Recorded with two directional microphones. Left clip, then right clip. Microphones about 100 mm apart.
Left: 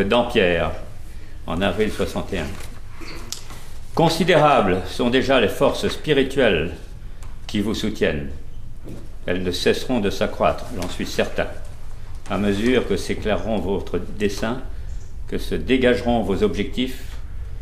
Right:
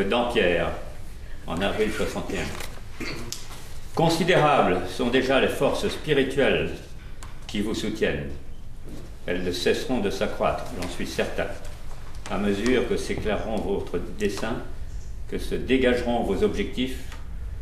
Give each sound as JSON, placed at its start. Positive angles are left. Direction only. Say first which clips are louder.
{"t": 0.0, "sound": "speech", "louder": "left 4 dB", "side_deg": -40}
{"t": 3.3, "sound": "a sound", "louder": "left 3 dB", "side_deg": -40}
{"t": 3.9, "sound": "speech", "louder": "left 4 dB", "side_deg": -40}
{"t": 9.2, "sound": "speech", "louder": "left 4 dB", "side_deg": -40}